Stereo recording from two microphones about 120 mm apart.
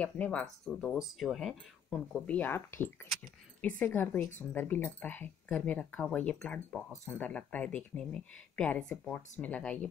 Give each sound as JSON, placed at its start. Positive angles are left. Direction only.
{"t": 0.0, "sound": "speech", "side_deg": 10}
{"t": 2.2, "sound": "speech", "side_deg": 15}